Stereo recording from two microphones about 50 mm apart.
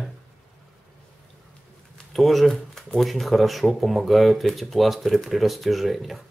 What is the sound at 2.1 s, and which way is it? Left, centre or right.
Speech, centre.